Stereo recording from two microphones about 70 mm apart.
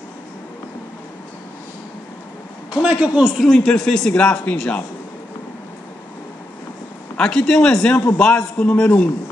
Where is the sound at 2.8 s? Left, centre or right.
Centre.